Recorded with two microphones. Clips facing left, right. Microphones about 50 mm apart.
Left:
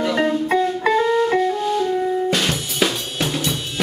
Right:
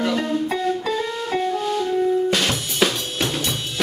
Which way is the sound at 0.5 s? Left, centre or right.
Left.